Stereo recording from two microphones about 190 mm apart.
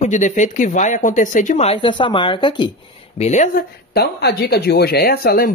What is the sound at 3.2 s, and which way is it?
Speech, 40° left (ahead or behind).